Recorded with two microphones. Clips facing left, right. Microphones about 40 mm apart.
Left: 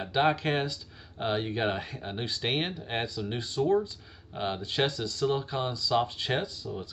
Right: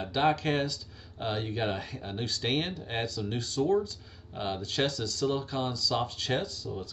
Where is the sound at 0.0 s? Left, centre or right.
Centre.